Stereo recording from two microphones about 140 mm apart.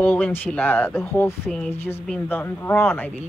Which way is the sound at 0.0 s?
10° left (ahead or behind).